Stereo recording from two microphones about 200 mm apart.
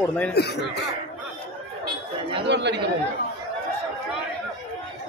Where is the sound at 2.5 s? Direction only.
60° right (ahead or behind).